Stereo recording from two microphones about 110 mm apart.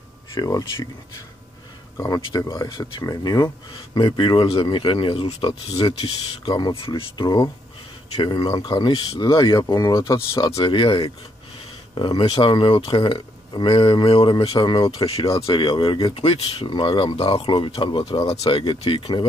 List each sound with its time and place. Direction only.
0.3 s speech: 35° left (ahead or behind)
2.0 s speech: 30° left (ahead or behind)
3.9 s speech: 45° left (ahead or behind); by 6.1 s 65° left (ahead or behind)
6.4 s speech: 40° left (ahead or behind)
10.6 s speech: 50° left (ahead or behind)
12.3 s speech: 50° left (ahead or behind)
14.3 s speech: 35° left (ahead or behind)
15.5 s speech: 50° left (ahead or behind)